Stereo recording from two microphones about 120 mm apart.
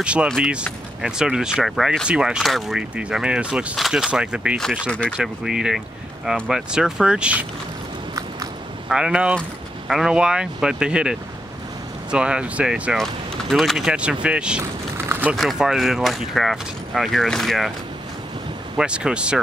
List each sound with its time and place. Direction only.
0.0 s speech: 10° right (ahead or behind)
8.8 s speech: 5° right (ahead or behind)
12.9 s speech: centre (ahead or behind)
14.6 s typing: 20° right (ahead or behind)
15.3 s speech: centre (ahead or behind)
18.8 s speech: 10° right (ahead or behind)